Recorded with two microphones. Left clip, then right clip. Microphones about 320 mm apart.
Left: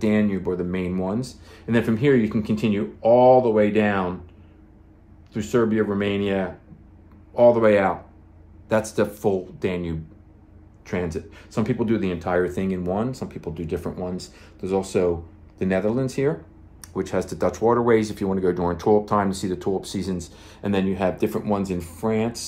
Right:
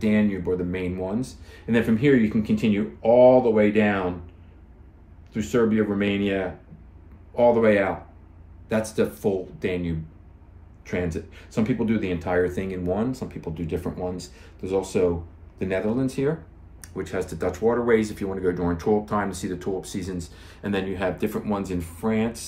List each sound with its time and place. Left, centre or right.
0.0 s speech: centre
5.3 s speech: centre